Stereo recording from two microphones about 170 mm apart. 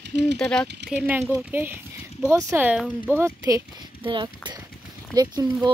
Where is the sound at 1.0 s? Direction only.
10° right (ahead or behind).